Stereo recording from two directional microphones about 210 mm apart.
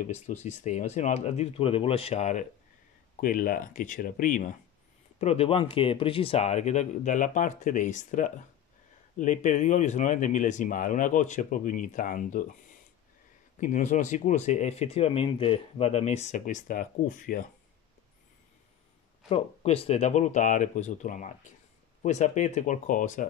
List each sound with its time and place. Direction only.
0.0 s speech: 35° left (ahead or behind)
5.2 s speech: 30° left (ahead or behind)
13.6 s speech: 35° left (ahead or behind)
19.2 s speech: 30° left (ahead or behind)